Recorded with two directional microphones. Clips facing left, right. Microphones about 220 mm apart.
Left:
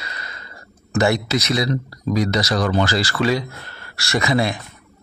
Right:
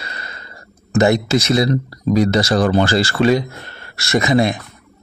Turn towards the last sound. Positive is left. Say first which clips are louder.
# right 4 dB
turn(degrees=-20)  # may be behind; listen again after turning